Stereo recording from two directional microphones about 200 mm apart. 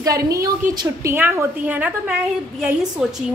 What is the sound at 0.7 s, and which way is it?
A woman's voice, 10° right (ahead or behind).